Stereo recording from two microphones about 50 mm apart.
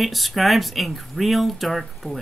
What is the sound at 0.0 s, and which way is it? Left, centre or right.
Speech, centre.